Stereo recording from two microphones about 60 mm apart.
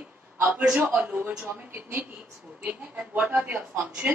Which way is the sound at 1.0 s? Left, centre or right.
Right.